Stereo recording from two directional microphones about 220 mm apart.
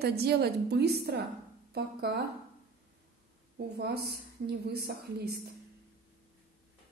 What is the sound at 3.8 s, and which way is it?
A woman's voice, 45° right (ahead or behind).